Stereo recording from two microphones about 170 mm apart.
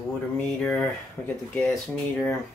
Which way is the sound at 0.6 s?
10° left (ahead or behind).